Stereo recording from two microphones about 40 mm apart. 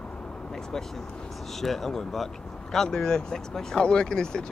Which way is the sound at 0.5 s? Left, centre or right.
Centre.